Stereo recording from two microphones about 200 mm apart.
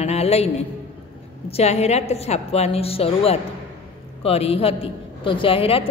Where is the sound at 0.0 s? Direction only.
30° left (ahead or behind).